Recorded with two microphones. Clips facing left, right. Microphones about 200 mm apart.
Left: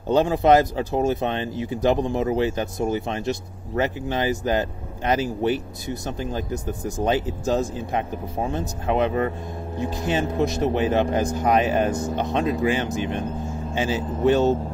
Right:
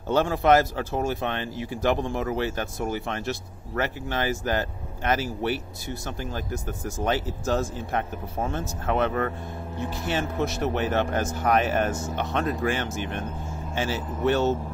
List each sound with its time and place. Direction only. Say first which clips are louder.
0.1 s speech: left 3 dB; 15° left (ahead or behind)